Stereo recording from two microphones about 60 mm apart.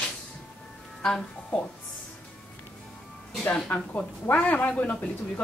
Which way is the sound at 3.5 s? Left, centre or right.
Left.